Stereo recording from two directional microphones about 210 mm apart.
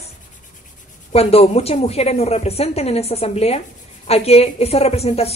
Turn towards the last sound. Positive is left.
turn(degrees=30)  # may be behind; listen again after turning